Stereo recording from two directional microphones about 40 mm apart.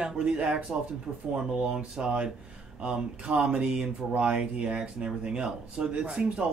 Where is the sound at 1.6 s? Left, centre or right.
Right.